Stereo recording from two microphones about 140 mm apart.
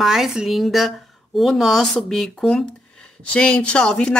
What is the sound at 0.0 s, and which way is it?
A woman's voice, 5° right (ahead or behind).